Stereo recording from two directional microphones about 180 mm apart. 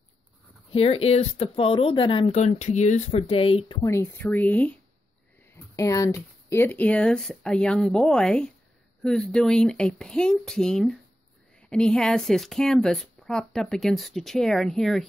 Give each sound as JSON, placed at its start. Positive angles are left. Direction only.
{"t": 0.7, "sound": "speech", "side_deg": 35}